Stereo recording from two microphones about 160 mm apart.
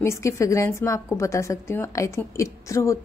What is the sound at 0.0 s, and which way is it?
A woman's voice, 15° left (ahead or behind).